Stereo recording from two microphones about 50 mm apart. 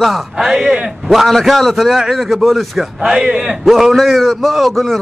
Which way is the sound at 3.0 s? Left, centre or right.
Centre.